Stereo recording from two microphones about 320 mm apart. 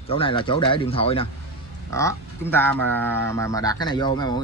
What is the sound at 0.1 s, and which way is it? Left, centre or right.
Speech, centre.